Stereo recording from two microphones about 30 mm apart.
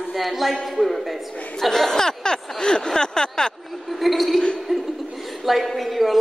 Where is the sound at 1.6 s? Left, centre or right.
Centre.